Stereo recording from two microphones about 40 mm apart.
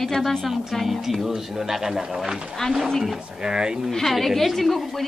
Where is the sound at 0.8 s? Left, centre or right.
Centre.